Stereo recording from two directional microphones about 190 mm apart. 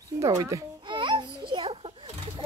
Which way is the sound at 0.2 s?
15° right (ahead or behind).